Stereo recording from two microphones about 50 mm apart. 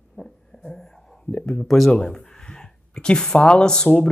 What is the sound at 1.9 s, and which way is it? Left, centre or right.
Speech, centre.